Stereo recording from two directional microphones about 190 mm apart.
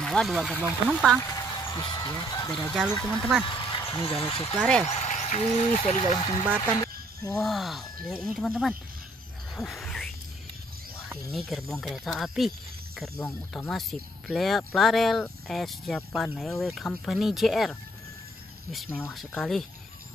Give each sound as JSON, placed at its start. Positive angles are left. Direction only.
{"t": 0.0, "sound": "speech", "side_deg": 0}
{"t": 1.3, "sound": "speech", "side_deg": 20}
{"t": 2.5, "sound": "speech", "side_deg": 0}
{"t": 3.6, "sound": "speech", "side_deg": 25}
{"t": 4.6, "sound": "speech", "side_deg": 5}
{"t": 4.8, "sound": "speech", "side_deg": 35}
{"t": 7.3, "sound": "speech", "side_deg": 0}
{"t": 9.6, "sound": "a sound", "side_deg": 0}
{"t": 11.1, "sound": "speech", "side_deg": 0}
{"t": 18.9, "sound": "speech", "side_deg": 10}